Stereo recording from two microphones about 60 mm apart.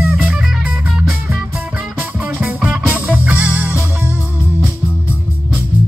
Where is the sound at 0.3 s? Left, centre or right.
Centre.